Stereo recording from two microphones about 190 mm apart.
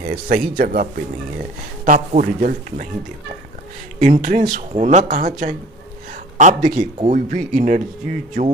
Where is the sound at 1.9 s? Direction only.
45° right (ahead or behind).